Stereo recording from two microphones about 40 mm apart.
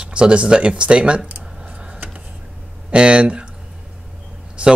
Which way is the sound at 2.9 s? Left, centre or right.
Right.